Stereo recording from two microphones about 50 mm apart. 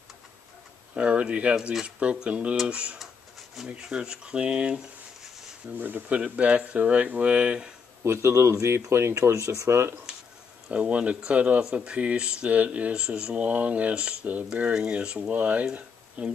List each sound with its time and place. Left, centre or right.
0.9 s speech: right
5.8 s speech: right
6.1 s speech: right
8.0 s speech: right
10.7 s speech: right